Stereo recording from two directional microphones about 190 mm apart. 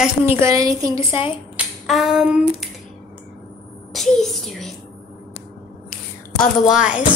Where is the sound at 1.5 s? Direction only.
Centre (ahead or behind).